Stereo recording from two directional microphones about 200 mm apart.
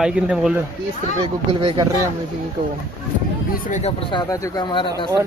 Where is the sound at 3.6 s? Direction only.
40° left (ahead or behind).